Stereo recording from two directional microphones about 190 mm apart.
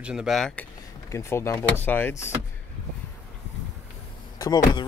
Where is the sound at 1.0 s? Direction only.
15° left (ahead or behind).